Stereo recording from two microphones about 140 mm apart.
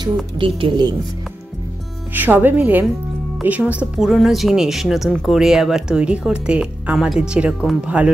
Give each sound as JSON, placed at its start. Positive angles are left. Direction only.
{"t": 0.0, "sound": "speech", "side_deg": -35}
{"t": 2.1, "sound": "speech", "side_deg": -15}